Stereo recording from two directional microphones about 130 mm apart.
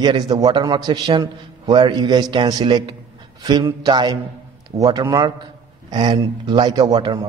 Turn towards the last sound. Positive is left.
turn(degrees=-35)  # may be behind; listen again after turning